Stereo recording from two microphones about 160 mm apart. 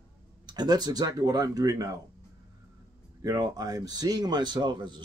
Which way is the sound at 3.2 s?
25° right (ahead or behind).